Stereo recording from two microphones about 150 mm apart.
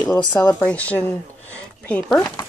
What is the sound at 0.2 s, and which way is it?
Speech, 20° left (ahead or behind).